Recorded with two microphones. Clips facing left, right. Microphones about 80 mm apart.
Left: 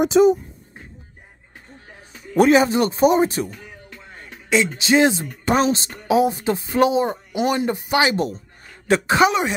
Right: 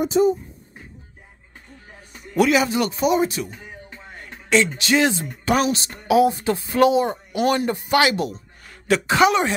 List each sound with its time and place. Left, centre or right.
0.0 s speech: left
2.3 s speech: left
4.5 s speech: centre